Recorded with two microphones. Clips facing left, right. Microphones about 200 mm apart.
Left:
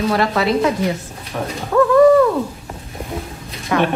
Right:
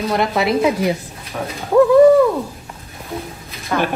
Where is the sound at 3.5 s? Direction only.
Centre (ahead or behind).